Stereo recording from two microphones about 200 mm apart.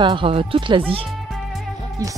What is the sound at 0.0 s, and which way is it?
Speech, 25° right (ahead or behind).